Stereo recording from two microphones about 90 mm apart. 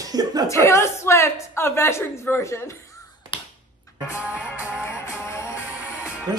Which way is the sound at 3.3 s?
70° left (ahead or behind).